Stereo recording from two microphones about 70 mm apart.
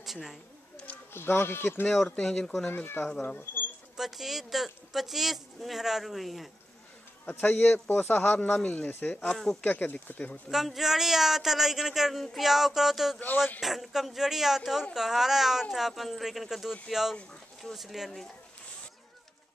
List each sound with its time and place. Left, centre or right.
0.0 s speech: centre
1.1 s speech: left
1.9 s speech: centre
2.7 s speech: left
3.9 s speech: centre
7.3 s speech: left
8.3 s speech: centre
9.6 s speech: left
10.5 s speech: centre